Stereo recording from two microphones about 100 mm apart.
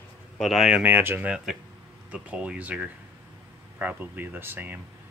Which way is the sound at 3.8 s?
20° right (ahead or behind).